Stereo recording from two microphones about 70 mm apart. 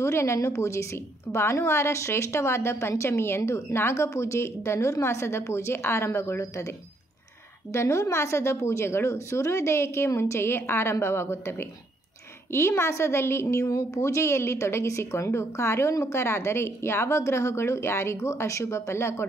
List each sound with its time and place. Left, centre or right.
0.0 s a woman's voice: left
7.7 s a woman's voice: left